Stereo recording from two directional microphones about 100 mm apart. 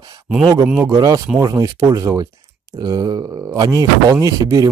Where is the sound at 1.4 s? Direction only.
40° right (ahead or behind).